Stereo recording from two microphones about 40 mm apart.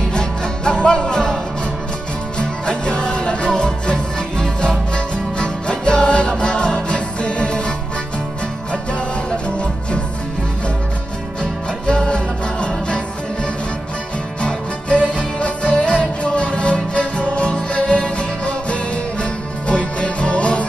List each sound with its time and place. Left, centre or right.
0.1 s music: left
9.3 s music: left
11.8 s music: left
14.4 s music: left